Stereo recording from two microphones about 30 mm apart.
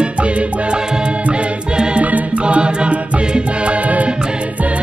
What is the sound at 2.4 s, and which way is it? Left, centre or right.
Music, right.